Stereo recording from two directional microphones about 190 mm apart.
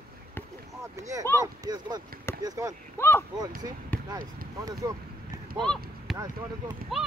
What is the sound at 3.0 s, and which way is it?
Speech, 10° left (ahead or behind).